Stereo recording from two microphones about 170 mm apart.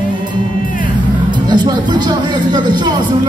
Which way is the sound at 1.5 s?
25° right (ahead or behind).